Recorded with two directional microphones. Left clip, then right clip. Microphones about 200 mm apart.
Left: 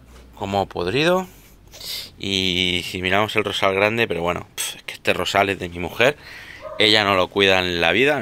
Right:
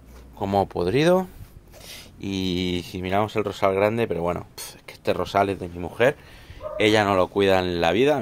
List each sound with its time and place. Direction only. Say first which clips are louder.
0.4 s speech: even; 25° right (ahead or behind)
1.8 s speech: left 9 dB; centre (ahead or behind)